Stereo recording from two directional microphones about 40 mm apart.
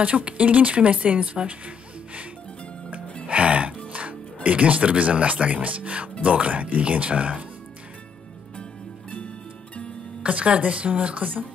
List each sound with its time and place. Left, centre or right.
0.0 s speech: right
3.3 s speech: right
10.2 s speech: right